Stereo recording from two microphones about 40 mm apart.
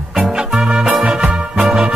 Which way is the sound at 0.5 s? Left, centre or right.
Right.